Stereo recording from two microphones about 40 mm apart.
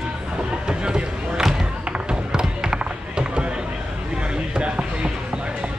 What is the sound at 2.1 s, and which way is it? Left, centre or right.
Run, centre.